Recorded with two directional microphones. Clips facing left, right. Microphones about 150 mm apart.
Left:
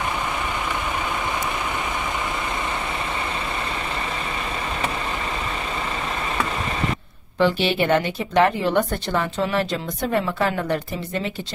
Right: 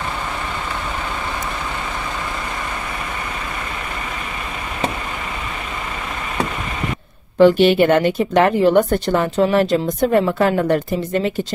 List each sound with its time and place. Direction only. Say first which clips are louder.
7.3 s a woman's voice: right 8 dB; 50° right (ahead or behind)